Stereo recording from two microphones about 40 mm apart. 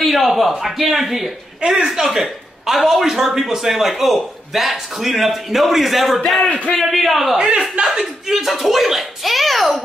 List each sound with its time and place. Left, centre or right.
0.0 s speech: centre
1.6 s speech: right
1.9 s a man's voice: centre
7.6 s speech: right
8.0 s a child's voice: centre